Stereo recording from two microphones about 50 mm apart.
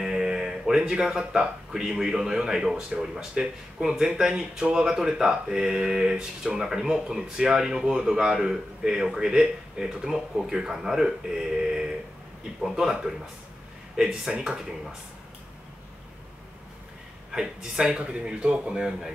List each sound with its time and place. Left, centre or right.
0.0 s speech: centre
17.3 s speech: centre